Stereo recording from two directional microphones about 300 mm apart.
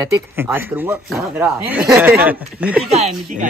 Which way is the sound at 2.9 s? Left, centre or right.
Right.